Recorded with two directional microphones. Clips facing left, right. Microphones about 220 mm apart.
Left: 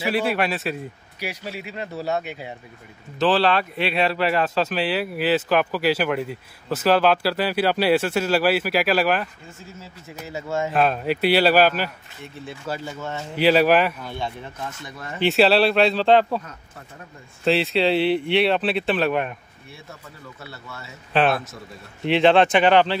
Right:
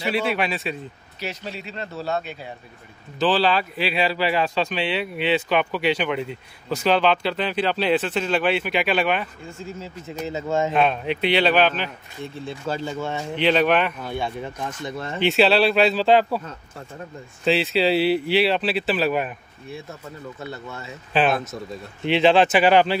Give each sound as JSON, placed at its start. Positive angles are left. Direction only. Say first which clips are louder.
{"t": 0.0, "sound": "speech", "louder": "left 1 dB", "side_deg": 0}
{"t": 3.2, "sound": "speech", "louder": "left 1 dB", "side_deg": 0}
{"t": 9.8, "sound": "speech", "louder": "right 6 dB", "side_deg": -20}
{"t": 10.7, "sound": "speech", "louder": "even", "side_deg": 5}
{"t": 13.4, "sound": "speech", "louder": "left 3 dB", "side_deg": 5}
{"t": 14.9, "sound": "speech", "louder": "right 6 dB", "side_deg": -30}
{"t": 15.2, "sound": "speech", "louder": "left 1 dB", "side_deg": 0}
{"t": 17.5, "sound": "speech", "louder": "even", "side_deg": 0}
{"t": 21.1, "sound": "speech", "louder": "even", "side_deg": 0}